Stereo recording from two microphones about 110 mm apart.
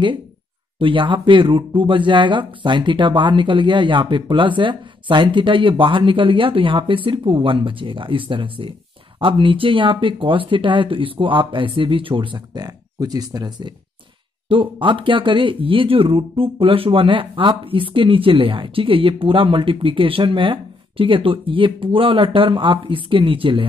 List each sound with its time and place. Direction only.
0.7 s speech: 50° right (ahead or behind)